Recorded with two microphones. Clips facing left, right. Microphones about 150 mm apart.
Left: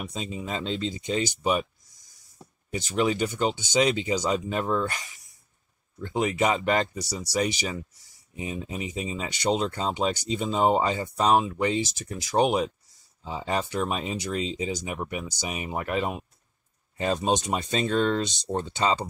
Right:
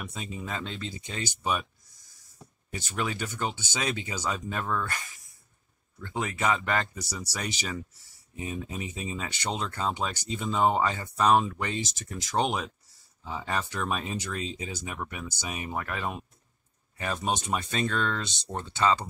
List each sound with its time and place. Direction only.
0.1 s speech: 20° left (ahead or behind)
2.7 s speech: 15° left (ahead or behind)